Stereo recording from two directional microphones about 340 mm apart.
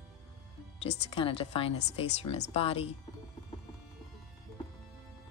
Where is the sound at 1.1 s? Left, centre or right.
Centre.